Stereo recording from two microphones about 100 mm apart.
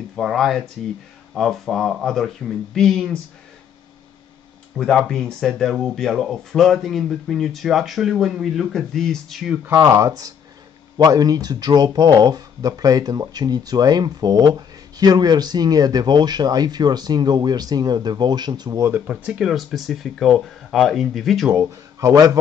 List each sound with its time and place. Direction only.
0.1 s speech: centre (ahead or behind)
4.7 s speech: 5° left (ahead or behind)
9.8 s speech: 30° right (ahead or behind)
18.9 s speech: 15° right (ahead or behind)
21.5 s speech: 35° right (ahead or behind)